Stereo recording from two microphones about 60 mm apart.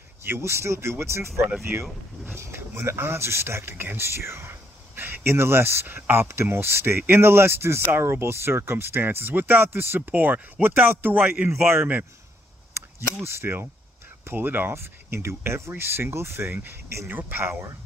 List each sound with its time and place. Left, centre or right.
0.2 s speech: right
6.2 s speech: right
17.1 s speech: right